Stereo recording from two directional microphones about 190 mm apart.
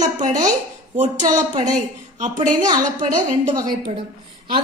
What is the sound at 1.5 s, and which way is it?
Speech, 40° right (ahead or behind).